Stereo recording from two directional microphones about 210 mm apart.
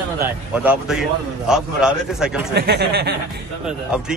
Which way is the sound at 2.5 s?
50° right (ahead or behind).